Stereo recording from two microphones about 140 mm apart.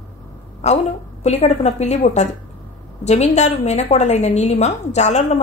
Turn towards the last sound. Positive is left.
turn(degrees=55)  # may be behind; listen again after turning